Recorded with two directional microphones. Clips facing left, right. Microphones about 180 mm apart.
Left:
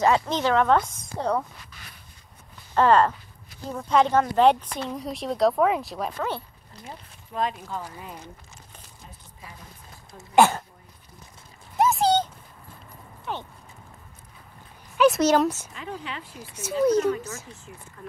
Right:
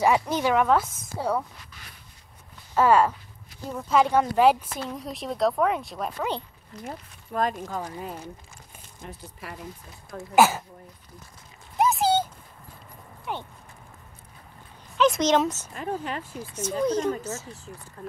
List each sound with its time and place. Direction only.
0.0 s a woman's voice: 10° right (ahead or behind)
2.7 s speech: 10° right (ahead or behind)
6.7 s speech: 35° left (ahead or behind)
7.3 s speech: 45° right (ahead or behind)
9.0 s speech: 75° right (ahead or behind)
10.3 s speech: 5° right (ahead or behind)
11.8 s a sound: centre (ahead or behind)
13.2 s speech: 15° right (ahead or behind)
15.0 s speech: 5° left (ahead or behind)
15.7 s speech: 45° right (ahead or behind)
16.5 s speech: 10° left (ahead or behind)
17.7 s speech: 40° right (ahead or behind)